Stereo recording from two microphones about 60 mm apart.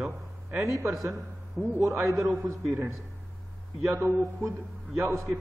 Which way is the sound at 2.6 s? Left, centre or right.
Right.